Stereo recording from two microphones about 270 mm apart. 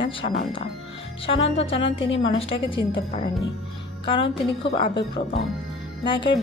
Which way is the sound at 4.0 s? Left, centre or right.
Centre.